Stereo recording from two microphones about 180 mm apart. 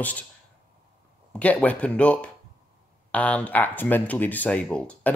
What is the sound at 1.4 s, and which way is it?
Speech, 10° left (ahead or behind).